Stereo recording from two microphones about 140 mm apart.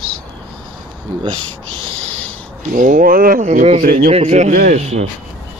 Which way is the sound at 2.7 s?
75° right (ahead or behind).